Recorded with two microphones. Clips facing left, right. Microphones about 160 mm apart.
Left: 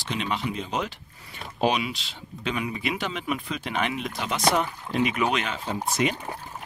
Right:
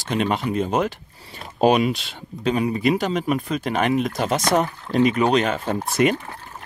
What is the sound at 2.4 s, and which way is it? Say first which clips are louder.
Speech: right 8 dB; 40° right (ahead or behind).